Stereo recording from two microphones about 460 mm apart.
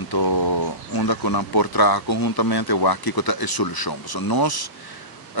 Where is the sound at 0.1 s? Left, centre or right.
Left.